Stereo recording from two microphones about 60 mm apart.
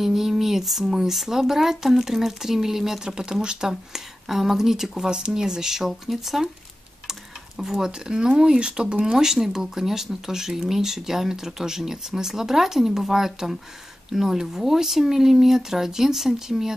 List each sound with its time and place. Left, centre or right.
0.0 s speech: centre